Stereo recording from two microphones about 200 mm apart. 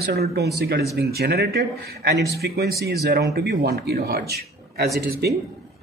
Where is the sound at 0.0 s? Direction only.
50° right (ahead or behind).